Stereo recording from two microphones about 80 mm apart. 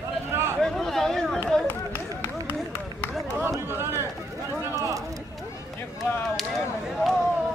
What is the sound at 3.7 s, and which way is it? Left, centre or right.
Speech, right.